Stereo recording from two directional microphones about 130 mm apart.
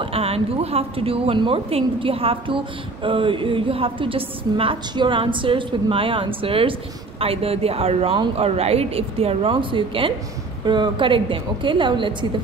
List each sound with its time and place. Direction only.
0.0 s a woman's voice: 45° right (ahead or behind)